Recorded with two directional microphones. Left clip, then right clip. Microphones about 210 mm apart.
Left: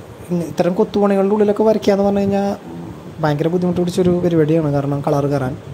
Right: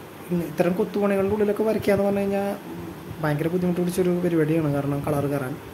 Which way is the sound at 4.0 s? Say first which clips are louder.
Left 7 dB; 25° left (ahead or behind).